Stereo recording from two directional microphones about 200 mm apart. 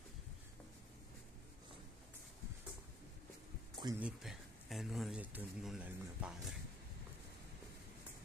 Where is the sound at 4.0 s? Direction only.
Centre (ahead or behind).